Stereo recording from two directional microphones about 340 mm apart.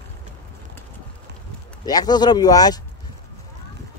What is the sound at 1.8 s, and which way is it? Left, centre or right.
Speech, centre.